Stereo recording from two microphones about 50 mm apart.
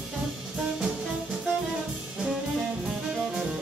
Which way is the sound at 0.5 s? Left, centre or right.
Centre.